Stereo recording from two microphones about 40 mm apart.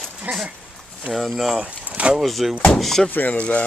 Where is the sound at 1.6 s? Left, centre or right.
Right.